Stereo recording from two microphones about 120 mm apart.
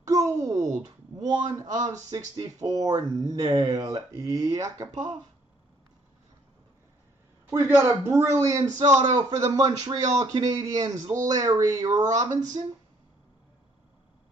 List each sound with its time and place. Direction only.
0.0 s a sound: 25° right (ahead or behind)
1.1 s a man's voice: 35° right (ahead or behind)
7.4 s a man's voice: 20° right (ahead or behind)